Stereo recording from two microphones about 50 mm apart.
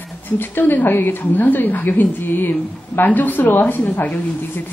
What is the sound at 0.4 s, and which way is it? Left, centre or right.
Speech, left.